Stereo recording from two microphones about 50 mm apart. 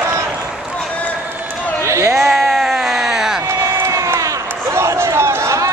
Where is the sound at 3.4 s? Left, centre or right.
Right.